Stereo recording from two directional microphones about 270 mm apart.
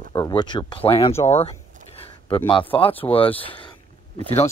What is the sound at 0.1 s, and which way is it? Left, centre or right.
Speech, centre.